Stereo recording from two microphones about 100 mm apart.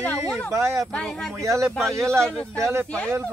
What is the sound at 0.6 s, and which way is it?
Speech, 30° right (ahead or behind).